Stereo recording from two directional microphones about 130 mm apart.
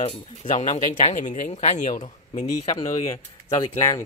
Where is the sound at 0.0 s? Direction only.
60° left (ahead or behind).